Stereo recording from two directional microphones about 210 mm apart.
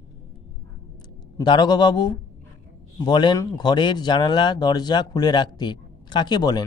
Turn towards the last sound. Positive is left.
turn(degrees=20)  # may be behind; listen again after turning